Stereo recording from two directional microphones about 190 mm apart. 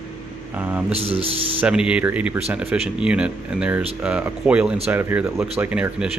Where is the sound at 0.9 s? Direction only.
30° right (ahead or behind).